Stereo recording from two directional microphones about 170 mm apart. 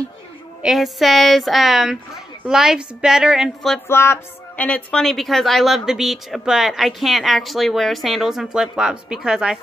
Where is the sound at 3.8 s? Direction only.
15° left (ahead or behind).